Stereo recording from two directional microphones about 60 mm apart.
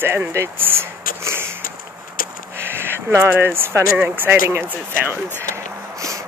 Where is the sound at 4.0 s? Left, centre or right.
Right.